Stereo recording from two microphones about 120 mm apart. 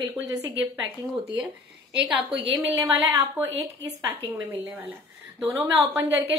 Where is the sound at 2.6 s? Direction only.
25° right (ahead or behind).